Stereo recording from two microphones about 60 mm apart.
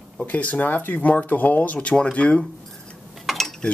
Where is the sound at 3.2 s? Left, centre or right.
Centre.